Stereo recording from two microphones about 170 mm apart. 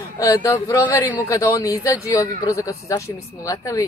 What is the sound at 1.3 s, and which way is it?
A woman's voice, 20° left (ahead or behind).